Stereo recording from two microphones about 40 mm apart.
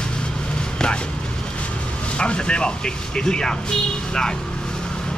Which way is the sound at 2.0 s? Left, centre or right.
Left.